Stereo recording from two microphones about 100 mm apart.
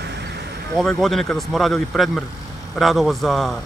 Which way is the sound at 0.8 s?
5° left (ahead or behind).